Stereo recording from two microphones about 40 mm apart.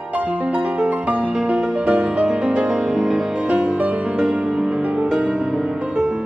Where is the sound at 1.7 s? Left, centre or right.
Right.